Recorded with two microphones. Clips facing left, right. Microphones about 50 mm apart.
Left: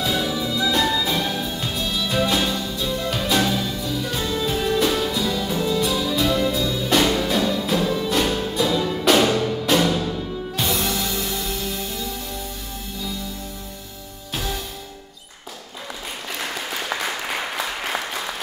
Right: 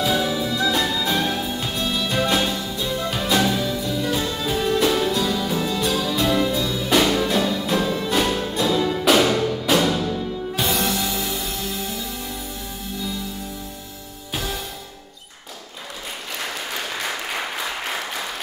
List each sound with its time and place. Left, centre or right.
0.0 s music: centre
14.3 s music: centre